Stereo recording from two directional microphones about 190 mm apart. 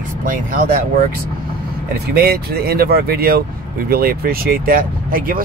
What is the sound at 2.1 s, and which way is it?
Speech, 55° right (ahead or behind).